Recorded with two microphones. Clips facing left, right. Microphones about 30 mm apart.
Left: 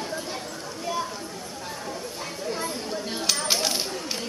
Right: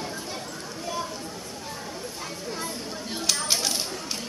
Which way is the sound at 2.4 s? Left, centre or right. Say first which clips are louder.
Left 5 dB; centre.